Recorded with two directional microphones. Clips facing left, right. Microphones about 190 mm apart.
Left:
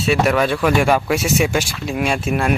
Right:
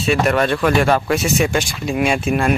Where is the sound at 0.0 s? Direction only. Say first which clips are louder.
Even; 5° left (ahead or behind).